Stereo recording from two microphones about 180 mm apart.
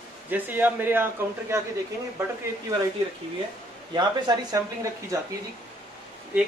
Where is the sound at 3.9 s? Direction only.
25° right (ahead or behind).